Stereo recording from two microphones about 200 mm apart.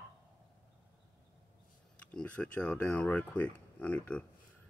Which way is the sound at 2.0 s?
5° left (ahead or behind).